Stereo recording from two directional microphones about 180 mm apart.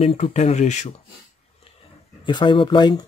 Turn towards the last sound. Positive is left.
turn(degrees=25)  # may be behind; listen again after turning